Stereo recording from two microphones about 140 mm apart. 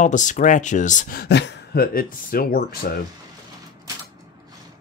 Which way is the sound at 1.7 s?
90° left.